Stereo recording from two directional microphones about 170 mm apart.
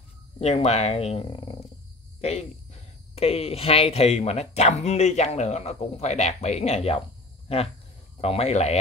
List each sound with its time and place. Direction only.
0.4 s speech: 40° left (ahead or behind)